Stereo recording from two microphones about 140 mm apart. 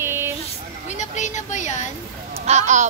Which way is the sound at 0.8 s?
60° left (ahead or behind).